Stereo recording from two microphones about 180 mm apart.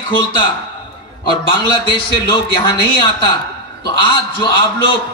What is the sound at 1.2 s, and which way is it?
A man's voice, 25° left (ahead or behind).